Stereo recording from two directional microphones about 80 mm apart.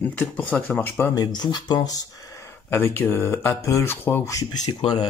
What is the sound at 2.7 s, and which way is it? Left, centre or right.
Speech, left.